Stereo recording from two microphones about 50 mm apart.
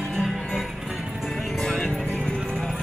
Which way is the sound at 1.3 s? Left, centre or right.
Centre.